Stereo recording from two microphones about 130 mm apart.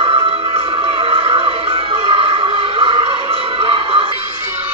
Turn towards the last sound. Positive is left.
turn(degrees=-45)  # may be behind; listen again after turning